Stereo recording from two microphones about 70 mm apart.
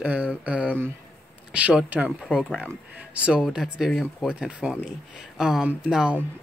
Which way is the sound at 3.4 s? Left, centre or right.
Centre.